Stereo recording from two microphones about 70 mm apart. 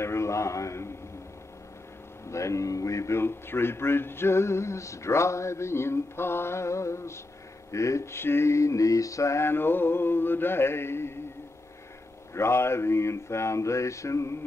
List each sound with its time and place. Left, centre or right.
0.0 s a man's voice: left
2.2 s a man's voice: left
12.4 s a man's voice: left